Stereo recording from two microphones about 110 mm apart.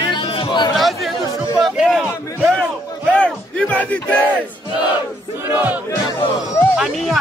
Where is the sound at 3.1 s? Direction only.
10° left (ahead or behind).